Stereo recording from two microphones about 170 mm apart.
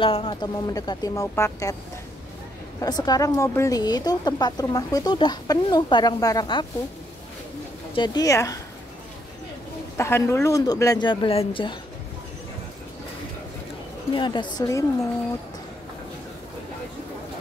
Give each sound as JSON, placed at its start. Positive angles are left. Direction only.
{"t": 0.0, "sound": "speech", "side_deg": 30}
{"t": 2.8, "sound": "speech", "side_deg": 25}
{"t": 7.9, "sound": "speech", "side_deg": 25}
{"t": 9.9, "sound": "speech", "side_deg": 15}
{"t": 14.1, "sound": "speech", "side_deg": 30}